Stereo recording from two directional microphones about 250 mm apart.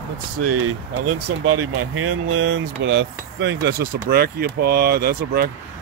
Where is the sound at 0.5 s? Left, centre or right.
Right.